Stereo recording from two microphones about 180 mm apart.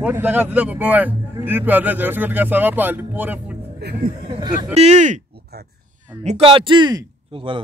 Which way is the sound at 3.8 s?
65° right (ahead or behind).